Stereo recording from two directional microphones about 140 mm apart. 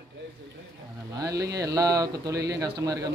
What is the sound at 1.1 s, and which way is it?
Speech, 25° right (ahead or behind).